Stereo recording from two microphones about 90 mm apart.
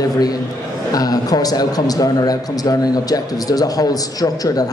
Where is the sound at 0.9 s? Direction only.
45° left (ahead or behind).